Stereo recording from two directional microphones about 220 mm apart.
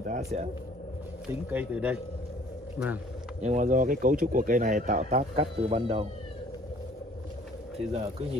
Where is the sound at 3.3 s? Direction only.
30° right (ahead or behind).